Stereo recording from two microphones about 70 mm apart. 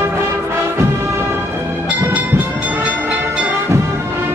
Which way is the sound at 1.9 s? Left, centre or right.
Right.